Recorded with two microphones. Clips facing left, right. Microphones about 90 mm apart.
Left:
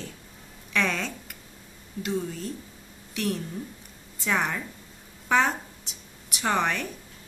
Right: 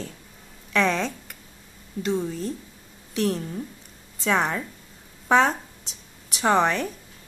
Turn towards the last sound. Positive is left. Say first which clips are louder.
# right 5 dB
turn(degrees=-35)  # may be behind; listen again after turning